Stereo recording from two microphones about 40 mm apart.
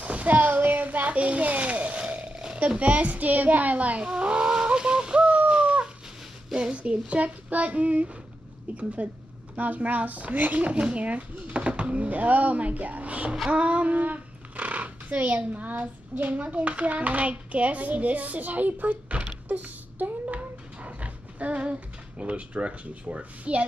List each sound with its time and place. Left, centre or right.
0.0 s speech: right
0.4 s a sound: right
2.8 s speech: right
4.1 s bird: right
6.5 s speech: right
10.6 s speech: right